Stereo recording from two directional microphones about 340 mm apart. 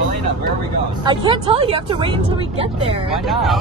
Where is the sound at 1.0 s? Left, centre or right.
Centre.